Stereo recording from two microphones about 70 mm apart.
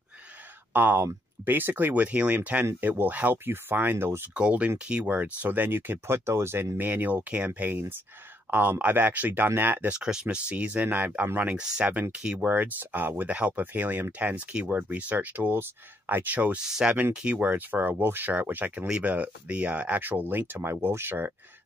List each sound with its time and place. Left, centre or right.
0.7 s speech: right
4.3 s speech: centre; by 6.7 s right
6.8 s speech: right
9.9 s speech: centre; by 16.3 s right
16.3 s speech: centre; by 21.3 s right